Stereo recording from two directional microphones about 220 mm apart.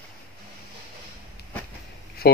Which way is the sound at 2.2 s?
45° left (ahead or behind).